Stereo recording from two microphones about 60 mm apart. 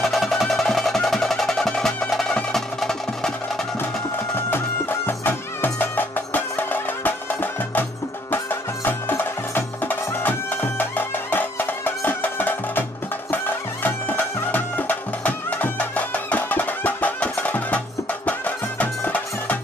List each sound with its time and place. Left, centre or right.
0.1 s music: centre
4.4 s music: left
13.8 s music: left